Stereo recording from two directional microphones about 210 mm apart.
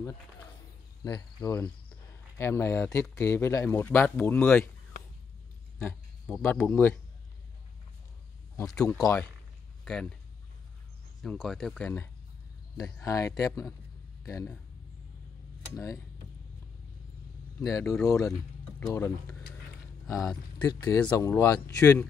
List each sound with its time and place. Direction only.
1.0 s speech: 15° left (ahead or behind)
5.8 s speech: 5° left (ahead or behind)
8.8 s speech: 15° left (ahead or behind)
9.8 s speech: 5° left (ahead or behind)
11.2 s speech: centre (ahead or behind)
15.7 s speech: 15° left (ahead or behind)
17.6 s speech: 15° left (ahead or behind)
20.6 s speech: 15° left (ahead or behind)